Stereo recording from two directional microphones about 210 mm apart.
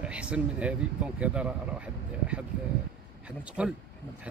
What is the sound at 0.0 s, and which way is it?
Speech, 5° right (ahead or behind).